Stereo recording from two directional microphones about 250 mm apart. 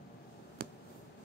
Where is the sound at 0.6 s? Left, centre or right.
Right.